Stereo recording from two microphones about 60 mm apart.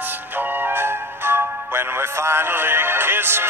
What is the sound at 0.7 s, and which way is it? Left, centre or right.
Music, right.